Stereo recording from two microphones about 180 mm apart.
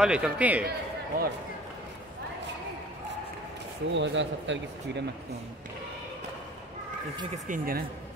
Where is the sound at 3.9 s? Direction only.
90° right.